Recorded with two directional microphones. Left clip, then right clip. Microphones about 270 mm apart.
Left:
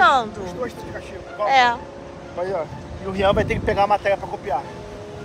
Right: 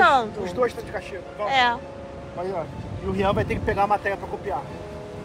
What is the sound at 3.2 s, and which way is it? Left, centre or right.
Speech, left.